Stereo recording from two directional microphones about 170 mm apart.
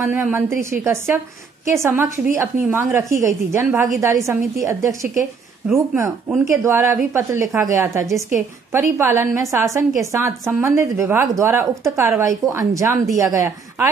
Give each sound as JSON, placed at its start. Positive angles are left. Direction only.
{"t": 0.0, "sound": "a woman's voice", "side_deg": -10}